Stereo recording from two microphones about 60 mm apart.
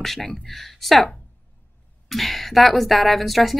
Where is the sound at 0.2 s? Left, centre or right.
Centre.